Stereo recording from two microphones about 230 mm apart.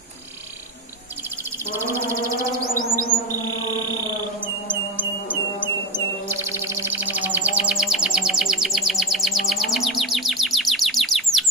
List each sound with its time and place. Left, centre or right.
1.7 s chirp: centre
4.6 s mantra: centre
6.2 s music: centre